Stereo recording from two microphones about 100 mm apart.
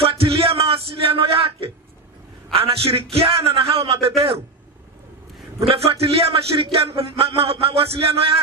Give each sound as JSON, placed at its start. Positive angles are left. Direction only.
{"t": 0.1, "sound": "music", "side_deg": -70}
{"t": 2.5, "sound": "speech", "side_deg": -75}
{"t": 5.7, "sound": "speech", "side_deg": -80}